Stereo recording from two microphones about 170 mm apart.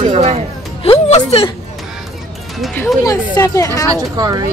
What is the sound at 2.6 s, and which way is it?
Speech, 5° left (ahead or behind).